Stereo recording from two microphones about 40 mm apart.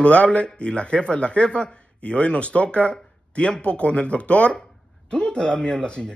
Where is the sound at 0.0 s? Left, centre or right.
Left.